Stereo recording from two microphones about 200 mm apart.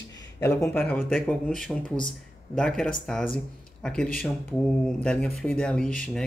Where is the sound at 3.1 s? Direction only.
Centre (ahead or behind).